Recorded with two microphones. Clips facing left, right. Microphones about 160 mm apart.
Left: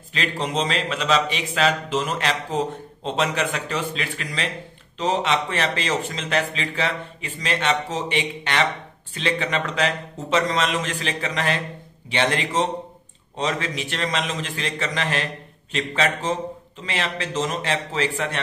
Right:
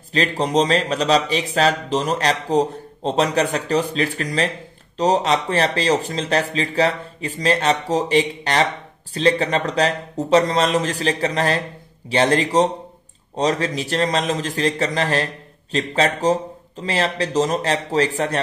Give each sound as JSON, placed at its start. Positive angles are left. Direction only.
{"t": 0.1, "sound": "a man's voice", "side_deg": -40}